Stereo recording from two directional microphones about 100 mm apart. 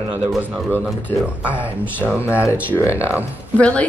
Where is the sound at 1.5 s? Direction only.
15° right (ahead or behind).